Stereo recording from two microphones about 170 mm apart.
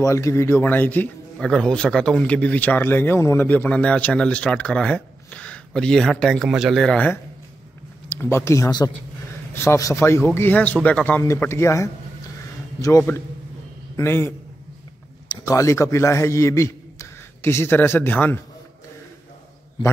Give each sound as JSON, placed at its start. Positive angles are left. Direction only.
{"t": 0.0, "sound": "a man's voice", "side_deg": 15}